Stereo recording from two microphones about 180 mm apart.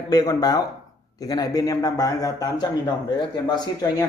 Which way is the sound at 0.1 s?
20° left (ahead or behind).